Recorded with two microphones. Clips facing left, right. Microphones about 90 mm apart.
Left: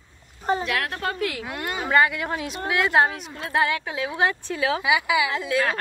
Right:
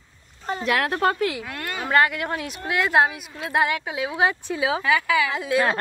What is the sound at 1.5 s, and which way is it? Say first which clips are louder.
Speech: left 2 dB; 20° left (ahead or behind).